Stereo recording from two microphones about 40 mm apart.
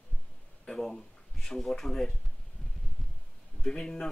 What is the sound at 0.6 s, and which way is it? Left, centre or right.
Speech, centre.